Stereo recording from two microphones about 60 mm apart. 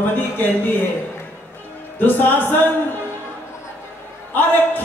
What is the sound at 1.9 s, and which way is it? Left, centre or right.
Speech, left.